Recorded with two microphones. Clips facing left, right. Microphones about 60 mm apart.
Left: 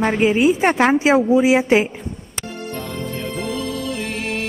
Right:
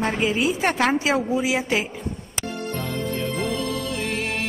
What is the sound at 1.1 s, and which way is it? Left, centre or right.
Speech, left.